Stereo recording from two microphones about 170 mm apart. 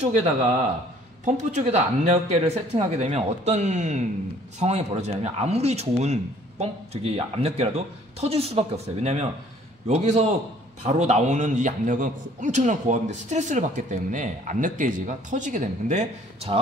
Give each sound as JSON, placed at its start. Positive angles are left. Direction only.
{"t": 1.2, "sound": "a man's voice", "side_deg": -45}